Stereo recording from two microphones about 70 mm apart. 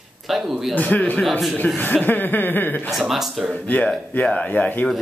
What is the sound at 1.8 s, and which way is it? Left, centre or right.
Speech, left.